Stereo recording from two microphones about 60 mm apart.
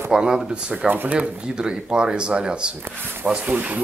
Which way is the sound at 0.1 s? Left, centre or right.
Centre.